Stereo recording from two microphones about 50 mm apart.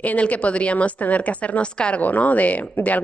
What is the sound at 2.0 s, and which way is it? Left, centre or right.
Speech, left.